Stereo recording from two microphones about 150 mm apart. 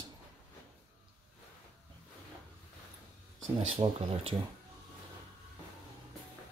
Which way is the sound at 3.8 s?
35° right (ahead or behind).